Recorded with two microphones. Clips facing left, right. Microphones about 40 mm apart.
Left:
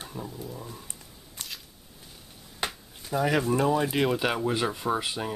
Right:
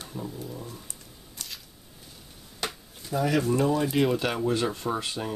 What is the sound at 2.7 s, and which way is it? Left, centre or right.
Speech, centre.